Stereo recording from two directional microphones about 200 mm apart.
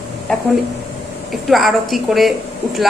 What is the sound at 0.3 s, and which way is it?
A woman's voice, 5° left (ahead or behind).